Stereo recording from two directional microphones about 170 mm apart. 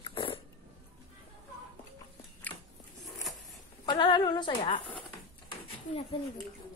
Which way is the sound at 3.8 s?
25° left (ahead or behind).